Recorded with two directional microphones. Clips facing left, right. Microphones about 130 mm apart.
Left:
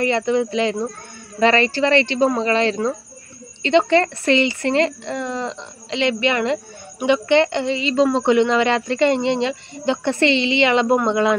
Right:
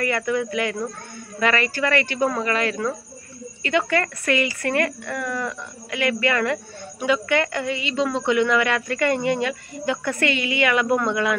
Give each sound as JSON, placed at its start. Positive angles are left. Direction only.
{"t": 0.0, "sound": "speech", "side_deg": 25}